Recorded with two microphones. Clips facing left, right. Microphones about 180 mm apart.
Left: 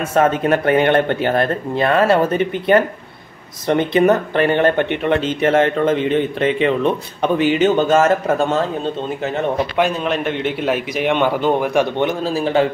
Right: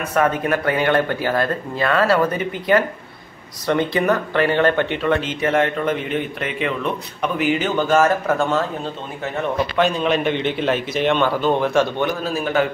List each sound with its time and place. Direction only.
0.1 s speech: 25° left (ahead or behind)
9.8 s a man's voice: 5° left (ahead or behind); by 12.6 s 30° left (ahead or behind)